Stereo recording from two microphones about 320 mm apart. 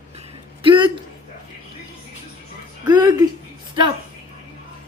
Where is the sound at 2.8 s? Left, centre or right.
Centre.